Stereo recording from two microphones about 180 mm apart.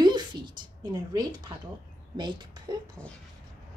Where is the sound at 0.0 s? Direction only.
25° right (ahead or behind).